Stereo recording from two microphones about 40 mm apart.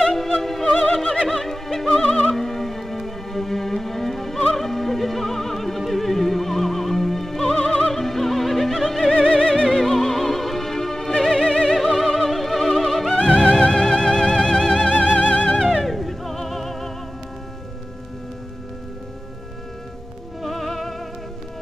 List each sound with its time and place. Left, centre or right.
0.0 s music: centre
0.9 s pigeon: centre
1.3 s music: centre
1.9 s opera: centre
2.3 s music: centre
9.1 s music: centre
9.7 s music: centre
13.1 s music: left
14.9 s music: left
15.8 s music: centre
20.4 s music: centre